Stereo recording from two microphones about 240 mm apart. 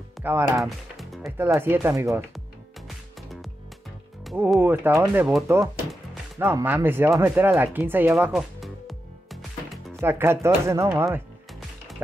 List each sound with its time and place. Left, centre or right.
0.2 s speech: centre
1.5 s speech: centre
4.3 s speech: centre